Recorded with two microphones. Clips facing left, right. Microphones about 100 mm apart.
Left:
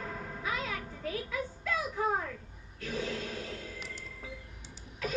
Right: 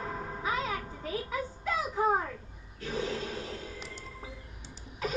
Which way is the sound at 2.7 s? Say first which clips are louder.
Right 2 dB; 25° right (ahead or behind).